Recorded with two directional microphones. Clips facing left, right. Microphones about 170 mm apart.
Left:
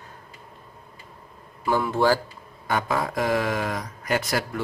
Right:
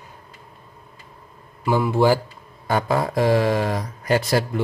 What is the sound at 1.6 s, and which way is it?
Speech, 5° right (ahead or behind).